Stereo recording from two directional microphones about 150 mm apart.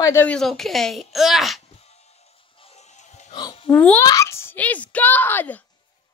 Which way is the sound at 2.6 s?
45° left (ahead or behind).